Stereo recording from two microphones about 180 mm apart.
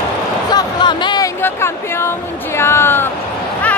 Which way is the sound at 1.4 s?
15° left (ahead or behind).